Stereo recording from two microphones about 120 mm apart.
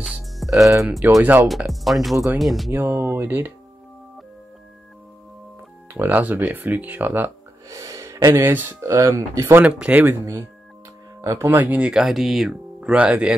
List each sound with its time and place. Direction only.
0.0 s music: 5° right (ahead or behind)
1.2 s speech: 15° right (ahead or behind)
1.7 s speech: centre (ahead or behind)
2.7 s speech: 15° right (ahead or behind)
5.9 s speech: 15° right (ahead or behind)
7.7 s a sound: 30° right (ahead or behind)
8.4 s speech: 15° right (ahead or behind)
11.1 s speech: 20° right (ahead or behind)